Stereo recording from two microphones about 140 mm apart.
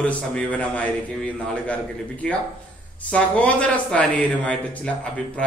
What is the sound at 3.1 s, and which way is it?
Speech, 10° left (ahead or behind).